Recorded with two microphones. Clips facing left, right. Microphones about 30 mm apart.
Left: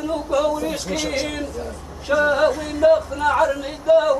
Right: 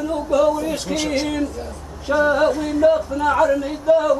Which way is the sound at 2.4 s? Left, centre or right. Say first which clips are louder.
Right 1 dB; left.